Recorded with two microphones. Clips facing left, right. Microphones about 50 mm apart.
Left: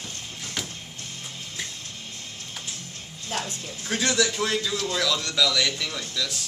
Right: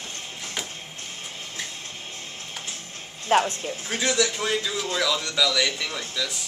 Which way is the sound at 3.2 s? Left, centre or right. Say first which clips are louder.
Right 11 dB; right.